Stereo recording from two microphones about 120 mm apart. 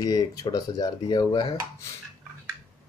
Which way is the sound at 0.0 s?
30° left (ahead or behind).